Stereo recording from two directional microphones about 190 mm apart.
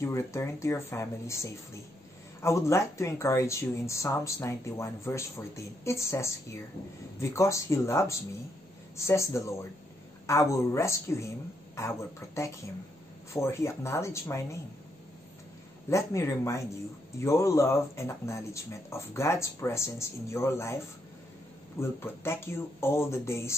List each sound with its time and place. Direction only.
0.0 s speech: 15° left (ahead or behind)
15.9 s speech: 15° left (ahead or behind)